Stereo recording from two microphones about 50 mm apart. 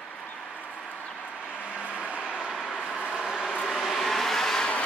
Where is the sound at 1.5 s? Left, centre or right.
Left.